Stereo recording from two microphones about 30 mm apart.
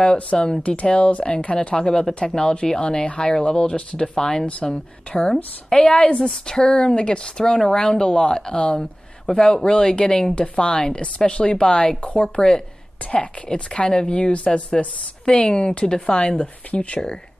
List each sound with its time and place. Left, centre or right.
0.0 s speech: left
1.8 s speech: left
4.6 s speech: centre
5.3 s speech: left
11.6 s speech: left
12.0 s speech: left
12.4 s speech: left
13.0 s speech: left
13.5 s speech: left